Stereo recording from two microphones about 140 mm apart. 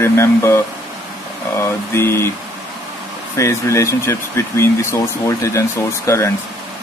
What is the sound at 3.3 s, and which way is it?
Speech, 20° left (ahead or behind).